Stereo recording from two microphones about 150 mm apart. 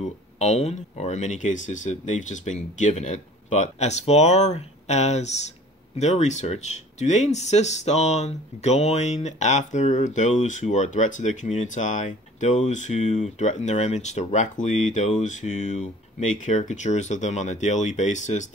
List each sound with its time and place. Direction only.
0.0 s speech: 50° left (ahead or behind)